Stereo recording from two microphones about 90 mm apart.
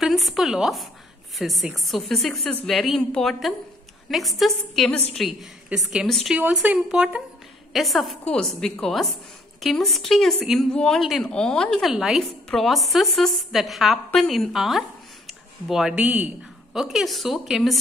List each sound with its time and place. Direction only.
0.0 s a woman's voice: centre (ahead or behind)
6.3 s a woman's voice: 20° right (ahead or behind)
16.0 s speech: 20° right (ahead or behind)
16.7 s a woman's voice: 5° right (ahead or behind)